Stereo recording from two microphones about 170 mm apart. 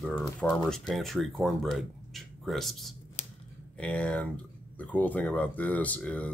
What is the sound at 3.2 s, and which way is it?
Scissors, 40° left (ahead or behind).